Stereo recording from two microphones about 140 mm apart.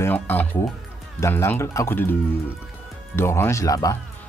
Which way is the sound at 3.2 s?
15° left (ahead or behind).